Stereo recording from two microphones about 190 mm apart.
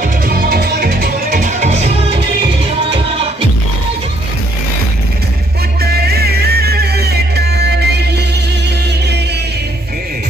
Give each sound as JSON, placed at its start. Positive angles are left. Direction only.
{"t": 0.0, "sound": "music", "side_deg": -50}
{"t": 5.8, "sound": "music", "side_deg": -55}